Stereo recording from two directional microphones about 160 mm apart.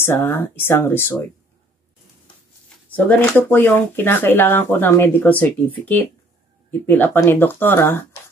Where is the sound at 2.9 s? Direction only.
10° left (ahead or behind).